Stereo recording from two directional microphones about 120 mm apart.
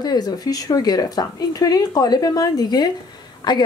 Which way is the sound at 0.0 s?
35° left (ahead or behind).